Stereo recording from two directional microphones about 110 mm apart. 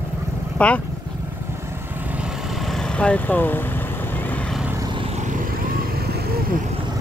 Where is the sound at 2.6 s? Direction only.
5° left (ahead or behind).